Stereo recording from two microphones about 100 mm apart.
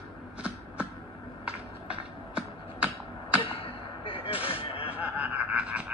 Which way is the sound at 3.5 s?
65° left (ahead or behind).